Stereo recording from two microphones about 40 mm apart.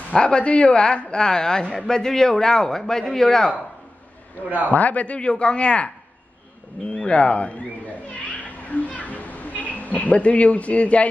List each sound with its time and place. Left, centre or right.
0.1 s a woman's voice: left
4.5 s a man's voice: right
4.7 s speech: left
6.9 s speech: left